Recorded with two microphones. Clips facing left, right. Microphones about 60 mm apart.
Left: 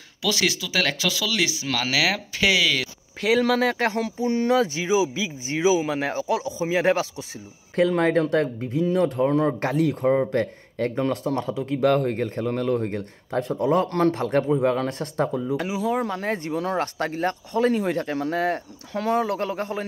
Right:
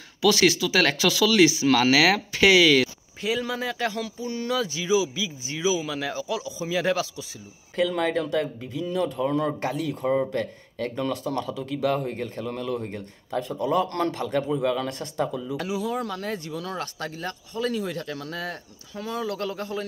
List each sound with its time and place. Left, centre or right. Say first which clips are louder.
0.2 s speech: right 5 dB; centre
3.2 s speech: left 7 dB; left
9.6 s speech: left 5 dB; left
11.8 s a man's voice: left 5 dB; left
14.6 s speech: left 3 dB; left
15.5 s speech: left 4 dB; left